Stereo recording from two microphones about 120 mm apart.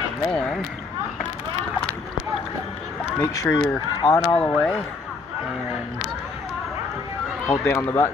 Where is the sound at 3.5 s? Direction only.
30° left (ahead or behind).